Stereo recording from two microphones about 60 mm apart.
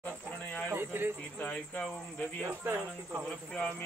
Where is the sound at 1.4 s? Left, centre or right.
Centre.